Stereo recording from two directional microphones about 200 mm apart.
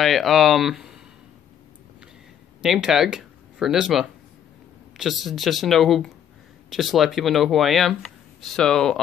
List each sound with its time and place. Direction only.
0.0 s speech: centre (ahead or behind)
2.6 s speech: centre (ahead or behind)